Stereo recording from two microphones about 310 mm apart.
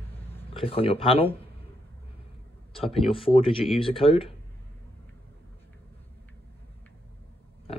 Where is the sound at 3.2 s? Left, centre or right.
Centre.